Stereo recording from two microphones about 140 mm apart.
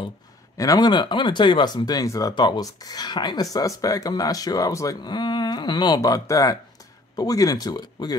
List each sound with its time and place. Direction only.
0.6 s speech: 25° left (ahead or behind)